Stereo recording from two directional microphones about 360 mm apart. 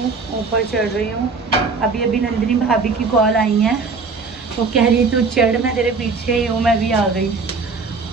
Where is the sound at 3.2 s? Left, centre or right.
Centre.